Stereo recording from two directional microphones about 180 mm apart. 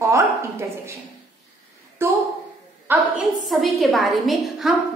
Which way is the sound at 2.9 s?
5° right (ahead or behind).